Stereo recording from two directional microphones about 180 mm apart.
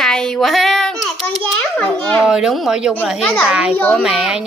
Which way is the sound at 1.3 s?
5° left (ahead or behind).